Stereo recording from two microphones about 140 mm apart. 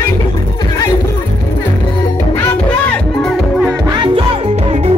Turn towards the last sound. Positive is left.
turn(degrees=-50)  # may be behind; listen again after turning